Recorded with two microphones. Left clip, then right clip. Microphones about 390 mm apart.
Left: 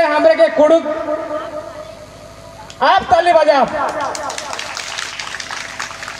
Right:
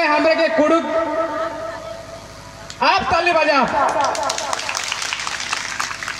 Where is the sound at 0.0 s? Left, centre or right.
Centre.